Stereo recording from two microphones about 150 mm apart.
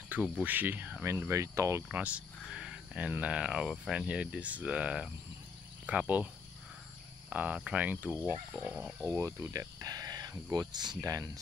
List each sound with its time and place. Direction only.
0.1 s speech: 10° right (ahead or behind)
7.2 s speech: 10° right (ahead or behind)
9.1 s speech: 20° right (ahead or behind)